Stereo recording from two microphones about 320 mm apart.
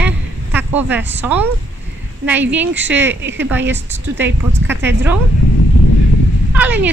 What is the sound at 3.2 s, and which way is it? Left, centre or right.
Speech, right.